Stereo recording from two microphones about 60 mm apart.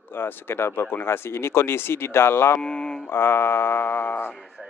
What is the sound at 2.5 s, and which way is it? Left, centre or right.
Speech, centre.